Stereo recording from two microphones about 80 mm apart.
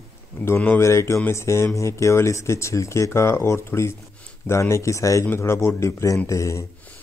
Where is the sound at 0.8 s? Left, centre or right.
Left.